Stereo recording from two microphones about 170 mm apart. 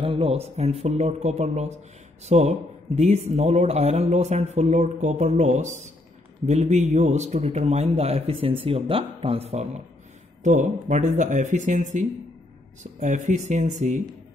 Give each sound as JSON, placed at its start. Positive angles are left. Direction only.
{"t": 0.0, "sound": "a man's voice", "side_deg": -35}